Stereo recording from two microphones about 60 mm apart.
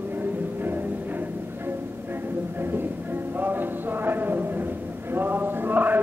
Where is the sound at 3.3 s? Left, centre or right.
Right.